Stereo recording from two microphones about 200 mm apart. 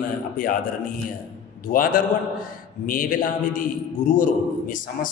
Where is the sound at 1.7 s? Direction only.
35° left (ahead or behind).